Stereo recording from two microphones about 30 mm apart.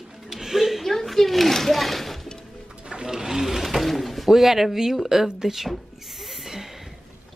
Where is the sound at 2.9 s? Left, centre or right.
Centre.